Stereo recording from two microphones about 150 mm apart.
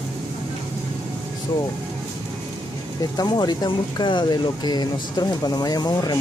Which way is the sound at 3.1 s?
25° left (ahead or behind).